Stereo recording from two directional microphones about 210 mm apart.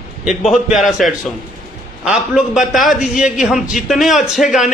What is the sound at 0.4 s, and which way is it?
A man's voice, centre (ahead or behind).